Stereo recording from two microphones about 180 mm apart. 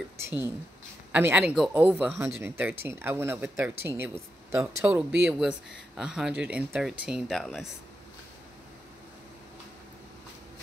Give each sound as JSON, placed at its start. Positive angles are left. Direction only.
{"t": 1.1, "sound": "speech", "side_deg": -10}
{"t": 5.4, "sound": "speech", "side_deg": -5}